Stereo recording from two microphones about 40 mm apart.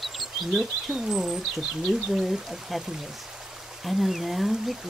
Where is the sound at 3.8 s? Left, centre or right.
Centre.